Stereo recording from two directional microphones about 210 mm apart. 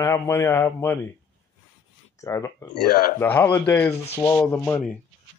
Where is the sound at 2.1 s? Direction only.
15° left (ahead or behind).